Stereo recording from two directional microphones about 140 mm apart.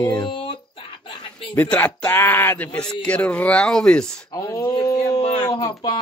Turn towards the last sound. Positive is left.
turn(degrees=30)  # may be behind; listen again after turning